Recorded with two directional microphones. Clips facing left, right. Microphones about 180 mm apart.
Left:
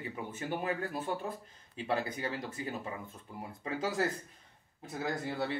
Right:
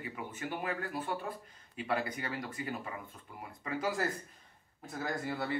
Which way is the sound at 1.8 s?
25° left (ahead or behind).